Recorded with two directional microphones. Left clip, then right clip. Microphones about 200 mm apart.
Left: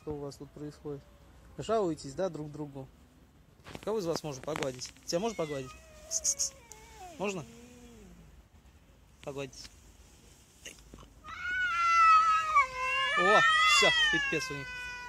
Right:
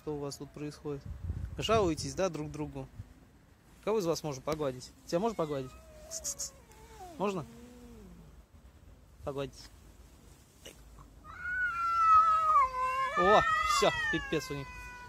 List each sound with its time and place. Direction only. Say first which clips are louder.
0.0 s speech: right 2 dB; 25° right (ahead or behind)
0.6 s speech: right 1 dB; 5° right (ahead or behind)
9.2 s speech: right 2 dB; centre (ahead or behind)
11.4 s cat: left 3 dB; 15° right (ahead or behind)
12.4 s cat: right 1 dB; centre (ahead or behind)
14.0 s speech: left 4 dB; centre (ahead or behind)